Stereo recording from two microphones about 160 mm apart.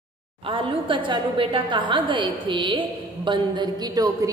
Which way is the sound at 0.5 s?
30° right (ahead or behind).